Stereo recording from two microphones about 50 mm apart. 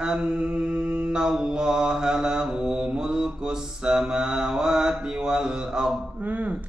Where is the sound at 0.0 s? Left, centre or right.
Centre.